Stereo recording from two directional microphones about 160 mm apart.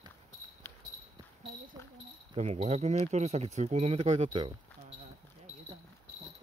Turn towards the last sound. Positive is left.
turn(degrees=-40)  # may be behind; listen again after turning